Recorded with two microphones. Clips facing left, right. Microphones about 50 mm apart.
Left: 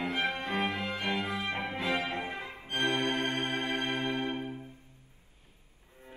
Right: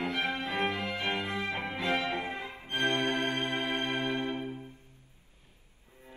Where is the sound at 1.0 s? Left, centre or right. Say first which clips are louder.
Left 1 dB; right.